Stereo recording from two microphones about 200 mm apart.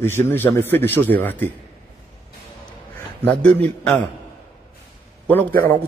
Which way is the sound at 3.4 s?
5° left (ahead or behind).